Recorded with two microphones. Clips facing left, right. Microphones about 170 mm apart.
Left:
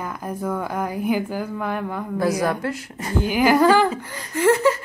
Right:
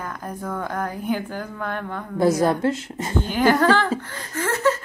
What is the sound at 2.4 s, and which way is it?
Speech, 25° right (ahead or behind).